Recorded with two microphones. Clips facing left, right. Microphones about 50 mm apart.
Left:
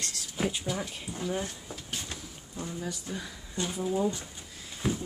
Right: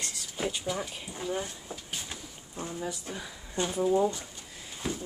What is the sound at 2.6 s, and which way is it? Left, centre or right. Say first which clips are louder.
Speech: right 1 dB; right.